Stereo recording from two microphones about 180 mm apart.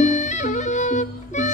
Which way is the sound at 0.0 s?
40° left (ahead or behind).